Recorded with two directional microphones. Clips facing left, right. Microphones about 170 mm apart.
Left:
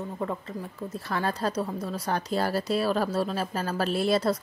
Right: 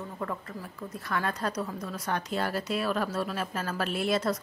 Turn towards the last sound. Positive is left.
turn(degrees=35)  # may be behind; listen again after turning